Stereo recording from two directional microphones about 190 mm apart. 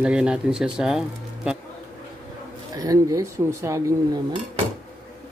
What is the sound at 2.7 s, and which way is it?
Speech, 20° right (ahead or behind).